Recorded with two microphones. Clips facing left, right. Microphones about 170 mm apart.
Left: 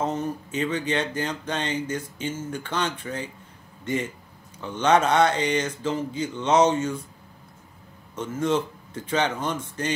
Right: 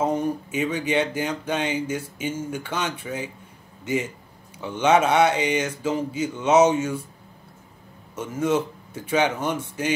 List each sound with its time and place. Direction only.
0.0 s a man's voice: 10° right (ahead or behind)
8.2 s speech: 10° right (ahead or behind)